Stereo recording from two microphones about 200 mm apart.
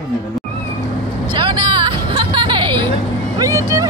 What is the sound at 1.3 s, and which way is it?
Vehicle, 25° right (ahead or behind).